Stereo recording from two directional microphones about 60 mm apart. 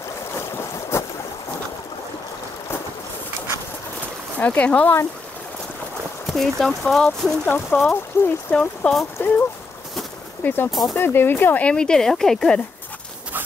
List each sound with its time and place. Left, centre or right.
0.9 s boat: left
4.4 s speech: left
6.2 s speech: centre
7.4 s speech: left
8.2 s speech: left
8.5 s speech: centre
9.2 s speech: left
10.4 s speech: left
10.7 s speech: centre
11.0 s speech: left
11.6 s speech: centre